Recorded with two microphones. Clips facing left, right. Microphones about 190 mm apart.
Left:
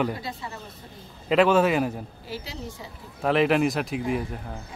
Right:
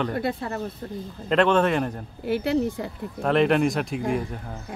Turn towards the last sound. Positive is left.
turn(degrees=0)  # may be behind; listen again after turning